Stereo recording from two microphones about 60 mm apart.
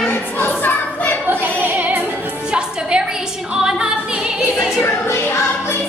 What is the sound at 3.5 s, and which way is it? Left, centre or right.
Music, centre.